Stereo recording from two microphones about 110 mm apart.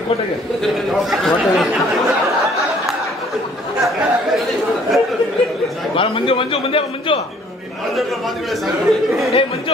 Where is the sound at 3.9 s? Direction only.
Centre (ahead or behind).